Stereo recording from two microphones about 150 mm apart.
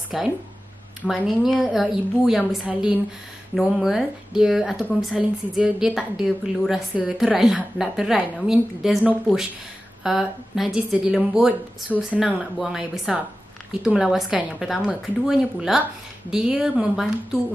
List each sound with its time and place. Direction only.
0.1 s a woman's voice: centre (ahead or behind)